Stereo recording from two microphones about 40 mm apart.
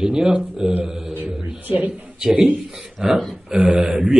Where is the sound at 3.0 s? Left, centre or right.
Centre.